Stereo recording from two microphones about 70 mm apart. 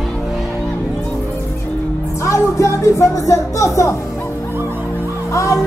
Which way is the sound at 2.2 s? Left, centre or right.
Left.